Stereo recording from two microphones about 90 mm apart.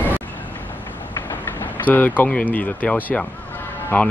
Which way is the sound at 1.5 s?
20° left (ahead or behind).